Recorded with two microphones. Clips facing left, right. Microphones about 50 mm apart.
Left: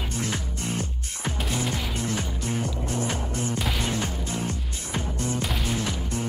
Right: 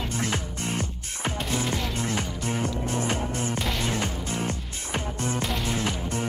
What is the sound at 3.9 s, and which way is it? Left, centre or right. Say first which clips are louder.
Music: even; right.